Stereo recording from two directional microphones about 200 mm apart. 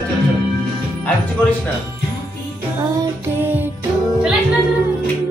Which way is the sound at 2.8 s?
20° right (ahead or behind).